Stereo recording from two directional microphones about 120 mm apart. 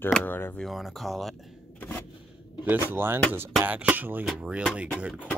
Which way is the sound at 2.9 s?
20° right (ahead or behind).